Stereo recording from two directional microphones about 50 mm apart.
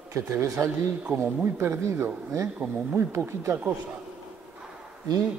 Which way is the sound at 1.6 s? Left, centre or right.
Right.